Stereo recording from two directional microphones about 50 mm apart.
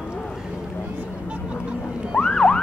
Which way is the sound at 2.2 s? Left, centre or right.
Centre.